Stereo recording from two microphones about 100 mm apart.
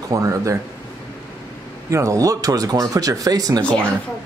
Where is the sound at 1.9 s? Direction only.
30° right (ahead or behind).